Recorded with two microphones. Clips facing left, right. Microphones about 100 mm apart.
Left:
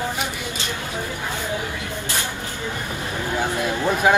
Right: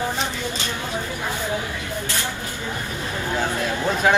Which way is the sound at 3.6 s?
15° left (ahead or behind).